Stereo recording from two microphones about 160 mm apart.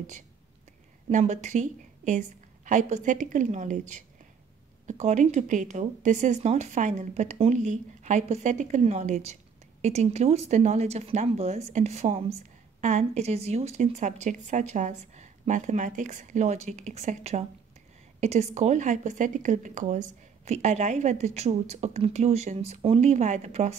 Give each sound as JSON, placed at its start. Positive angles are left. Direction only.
{"t": 1.1, "sound": "speech", "side_deg": -45}